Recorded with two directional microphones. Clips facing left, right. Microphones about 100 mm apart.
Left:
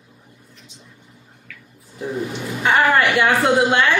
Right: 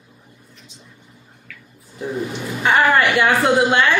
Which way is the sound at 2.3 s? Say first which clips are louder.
Right 1 dB; 15° right (ahead or behind).